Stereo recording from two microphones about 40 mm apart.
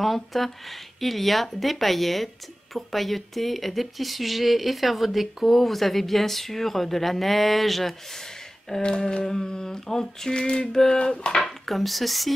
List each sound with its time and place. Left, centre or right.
0.0 s speech: centre
8.8 s a sound: left
11.4 s speech: centre